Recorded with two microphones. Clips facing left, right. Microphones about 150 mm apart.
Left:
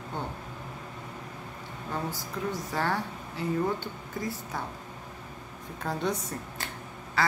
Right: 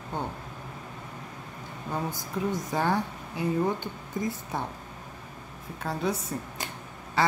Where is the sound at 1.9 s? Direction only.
20° right (ahead or behind).